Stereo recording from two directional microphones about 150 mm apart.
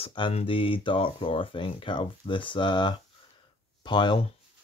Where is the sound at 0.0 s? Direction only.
35° left (ahead or behind).